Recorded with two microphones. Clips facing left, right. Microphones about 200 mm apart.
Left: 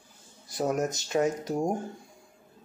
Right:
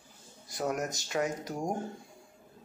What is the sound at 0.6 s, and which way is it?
Speech, 30° left (ahead or behind).